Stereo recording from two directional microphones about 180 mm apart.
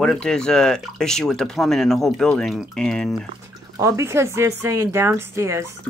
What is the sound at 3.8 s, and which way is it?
Speech, 15° right (ahead or behind).